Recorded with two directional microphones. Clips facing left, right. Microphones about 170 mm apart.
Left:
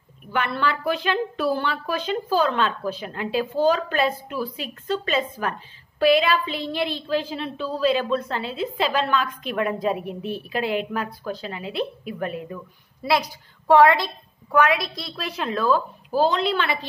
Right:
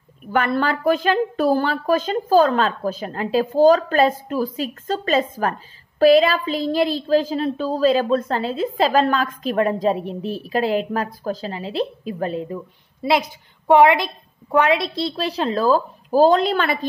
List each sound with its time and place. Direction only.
0.3 s speech: 45° right (ahead or behind)